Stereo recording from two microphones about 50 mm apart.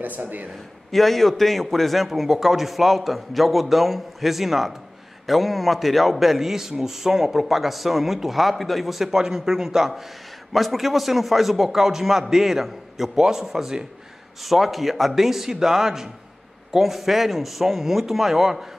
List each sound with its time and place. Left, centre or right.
0.0 s a man's voice: right
0.9 s a man's voice: centre